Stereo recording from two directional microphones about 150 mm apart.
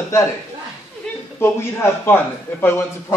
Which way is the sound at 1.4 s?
15° left (ahead or behind).